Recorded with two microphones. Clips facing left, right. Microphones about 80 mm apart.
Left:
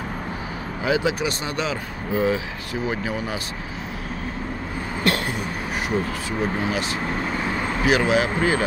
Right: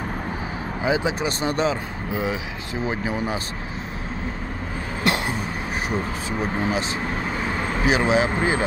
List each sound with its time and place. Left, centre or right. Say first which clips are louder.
0.8 s speech: left 1 dB; right
2.9 s speech: right 3 dB; right
5.0 s cough: even; centre
7.8 s speech: even; right